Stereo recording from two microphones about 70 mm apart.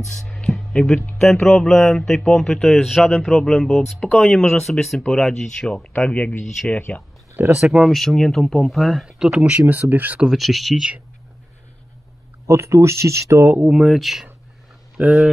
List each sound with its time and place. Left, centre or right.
0.0 s speech: centre
5.9 s speech: centre
7.4 s speech: right
7.8 s speech: centre
9.0 s speech: centre
9.4 s speech: right
10.2 s speech: centre
12.4 s speech: right
13.8 s speech: centre
15.0 s speech: centre